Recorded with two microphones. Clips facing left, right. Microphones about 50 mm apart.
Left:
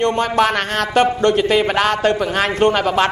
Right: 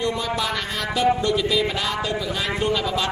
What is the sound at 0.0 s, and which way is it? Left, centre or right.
A man's voice, left.